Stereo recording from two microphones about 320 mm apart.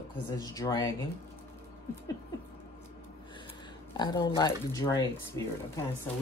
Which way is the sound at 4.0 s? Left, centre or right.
Centre.